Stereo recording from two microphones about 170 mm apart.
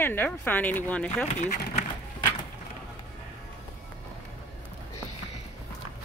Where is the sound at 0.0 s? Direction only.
10° left (ahead or behind).